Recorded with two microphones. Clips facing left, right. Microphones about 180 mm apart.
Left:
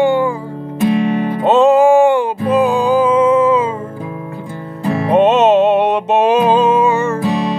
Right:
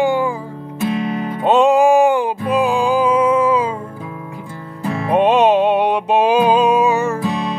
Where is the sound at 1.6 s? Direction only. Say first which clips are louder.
Left 3 dB; 15° right (ahead or behind).